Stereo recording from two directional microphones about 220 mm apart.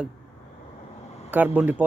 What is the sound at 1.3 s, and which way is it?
Speech, 10° right (ahead or behind).